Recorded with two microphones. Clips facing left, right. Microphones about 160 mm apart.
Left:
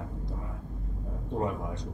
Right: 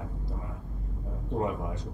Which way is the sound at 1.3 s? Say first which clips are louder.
Right 1 dB; 5° right (ahead or behind).